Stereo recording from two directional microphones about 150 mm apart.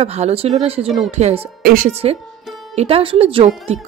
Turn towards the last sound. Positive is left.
turn(degrees=-40)  # may be behind; listen again after turning